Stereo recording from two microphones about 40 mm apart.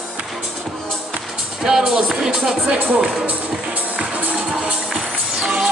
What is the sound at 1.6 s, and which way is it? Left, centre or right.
Music, centre.